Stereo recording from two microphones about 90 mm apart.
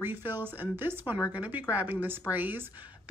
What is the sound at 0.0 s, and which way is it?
Speech, 20° right (ahead or behind).